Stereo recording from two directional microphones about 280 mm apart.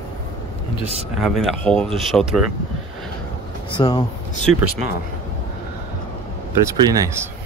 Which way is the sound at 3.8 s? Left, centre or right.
Centre.